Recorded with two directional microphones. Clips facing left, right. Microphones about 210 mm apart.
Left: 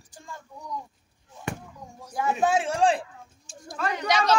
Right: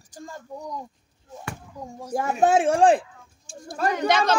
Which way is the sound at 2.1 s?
45° right (ahead or behind).